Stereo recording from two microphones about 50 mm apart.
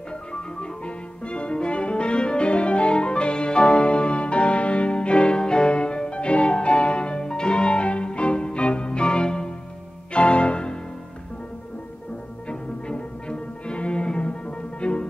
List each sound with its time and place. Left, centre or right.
0.3 s music: centre
12.4 s music: centre